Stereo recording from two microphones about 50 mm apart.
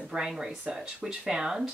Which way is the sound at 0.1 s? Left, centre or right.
Centre.